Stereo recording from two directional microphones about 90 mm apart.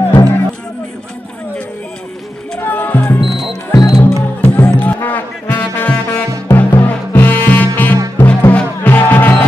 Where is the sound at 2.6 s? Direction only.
20° left (ahead or behind).